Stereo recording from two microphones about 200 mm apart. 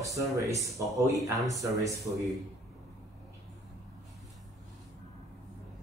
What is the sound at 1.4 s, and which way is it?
Speech, 15° right (ahead or behind).